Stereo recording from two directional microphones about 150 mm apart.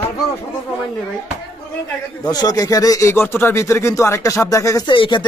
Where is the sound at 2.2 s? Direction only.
25° left (ahead or behind).